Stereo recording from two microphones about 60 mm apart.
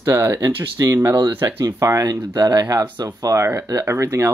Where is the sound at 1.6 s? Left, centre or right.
Right.